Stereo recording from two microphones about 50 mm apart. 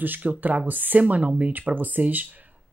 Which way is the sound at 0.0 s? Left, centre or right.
Right.